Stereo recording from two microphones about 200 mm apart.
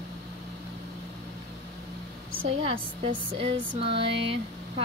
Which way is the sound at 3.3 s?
30° right (ahead or behind).